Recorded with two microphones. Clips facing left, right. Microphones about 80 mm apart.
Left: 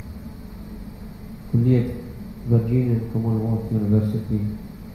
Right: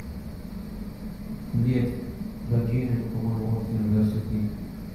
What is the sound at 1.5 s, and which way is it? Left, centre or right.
A man's voice, left.